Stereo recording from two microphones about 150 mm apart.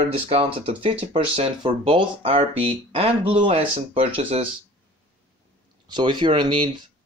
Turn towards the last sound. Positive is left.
turn(degrees=-30)  # may be behind; listen again after turning